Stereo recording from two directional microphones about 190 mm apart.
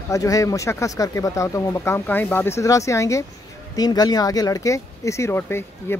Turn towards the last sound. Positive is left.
turn(degrees=10)  # may be behind; listen again after turning